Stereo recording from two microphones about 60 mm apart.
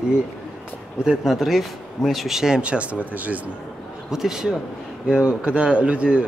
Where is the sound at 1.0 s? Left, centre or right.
Centre; by 3.3 s right.